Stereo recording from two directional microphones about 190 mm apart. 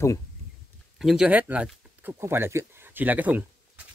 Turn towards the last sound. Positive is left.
turn(degrees=-10)  # may be behind; listen again after turning